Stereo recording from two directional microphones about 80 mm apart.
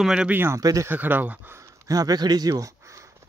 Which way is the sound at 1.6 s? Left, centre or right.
Right.